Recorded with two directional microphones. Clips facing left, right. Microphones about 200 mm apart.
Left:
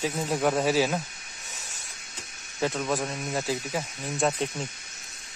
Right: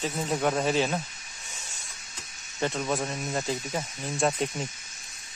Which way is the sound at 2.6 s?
Centre (ahead or behind).